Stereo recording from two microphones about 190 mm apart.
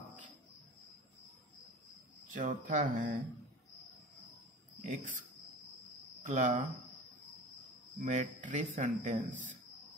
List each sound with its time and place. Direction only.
2.2 s speech: 40° right (ahead or behind)
4.8 s speech: 40° right (ahead or behind)
6.2 s speech: 40° right (ahead or behind)
8.0 s speech: 40° right (ahead or behind)